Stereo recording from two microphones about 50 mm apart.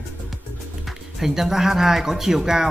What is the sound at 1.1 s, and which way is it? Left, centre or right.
Speech, centre.